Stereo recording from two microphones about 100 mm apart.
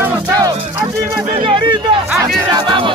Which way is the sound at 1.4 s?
55° right (ahead or behind).